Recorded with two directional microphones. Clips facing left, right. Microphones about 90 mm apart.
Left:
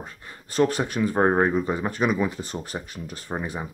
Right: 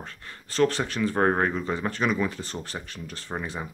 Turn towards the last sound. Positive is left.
turn(degrees=15)  # may be behind; listen again after turning